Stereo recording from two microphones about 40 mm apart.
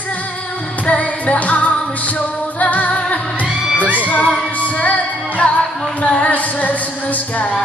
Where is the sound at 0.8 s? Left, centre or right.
Left.